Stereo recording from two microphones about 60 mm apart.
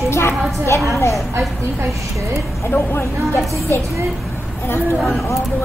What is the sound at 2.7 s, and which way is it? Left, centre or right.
Speech, left.